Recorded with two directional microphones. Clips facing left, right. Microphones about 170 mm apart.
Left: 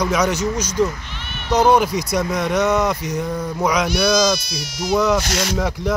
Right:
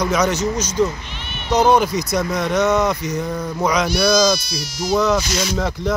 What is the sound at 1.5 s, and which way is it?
A man's voice, 10° left (ahead or behind).